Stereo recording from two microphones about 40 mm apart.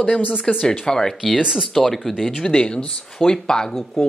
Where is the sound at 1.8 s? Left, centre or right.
Centre.